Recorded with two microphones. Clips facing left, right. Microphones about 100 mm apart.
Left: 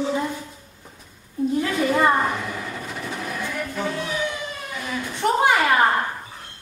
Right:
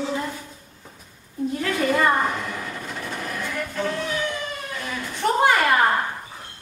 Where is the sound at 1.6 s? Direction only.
15° left (ahead or behind).